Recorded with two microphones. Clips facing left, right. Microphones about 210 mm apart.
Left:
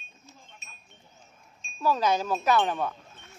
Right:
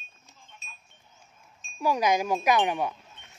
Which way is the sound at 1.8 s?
15° right (ahead or behind).